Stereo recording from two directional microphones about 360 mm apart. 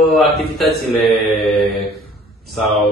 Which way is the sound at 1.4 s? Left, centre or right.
Centre.